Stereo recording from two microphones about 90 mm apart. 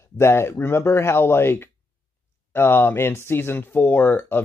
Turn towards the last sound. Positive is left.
turn(degrees=20)  # may be behind; listen again after turning